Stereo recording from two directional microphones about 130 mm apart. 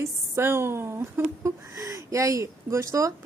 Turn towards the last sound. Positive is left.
turn(degrees=-25)  # may be behind; listen again after turning